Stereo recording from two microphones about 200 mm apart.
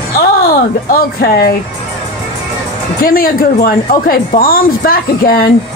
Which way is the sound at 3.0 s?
45° left (ahead or behind).